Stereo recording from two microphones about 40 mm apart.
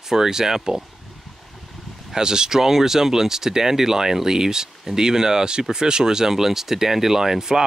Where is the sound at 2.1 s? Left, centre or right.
Centre.